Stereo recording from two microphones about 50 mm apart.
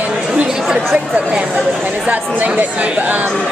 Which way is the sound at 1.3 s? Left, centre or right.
Right.